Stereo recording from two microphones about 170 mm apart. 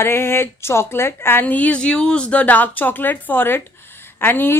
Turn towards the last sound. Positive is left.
turn(degrees=10)  # may be behind; listen again after turning